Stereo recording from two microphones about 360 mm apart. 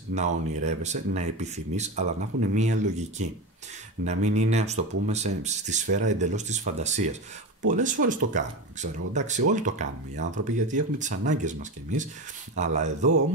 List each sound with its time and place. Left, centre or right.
0.1 s speech: centre
12.5 s speech: centre